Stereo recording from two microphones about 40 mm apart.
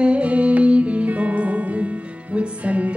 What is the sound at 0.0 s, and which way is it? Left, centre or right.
Music, right.